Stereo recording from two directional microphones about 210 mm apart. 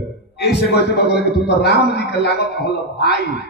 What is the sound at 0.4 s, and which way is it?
A man's voice, 50° left (ahead or behind).